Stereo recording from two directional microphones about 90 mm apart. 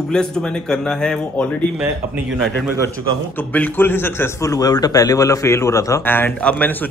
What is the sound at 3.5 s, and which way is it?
A man's voice, 20° left (ahead or behind).